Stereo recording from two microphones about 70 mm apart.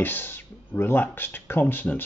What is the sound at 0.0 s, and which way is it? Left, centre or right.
Speech, left.